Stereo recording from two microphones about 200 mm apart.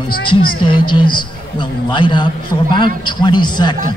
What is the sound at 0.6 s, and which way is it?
A man's voice, 25° left (ahead or behind).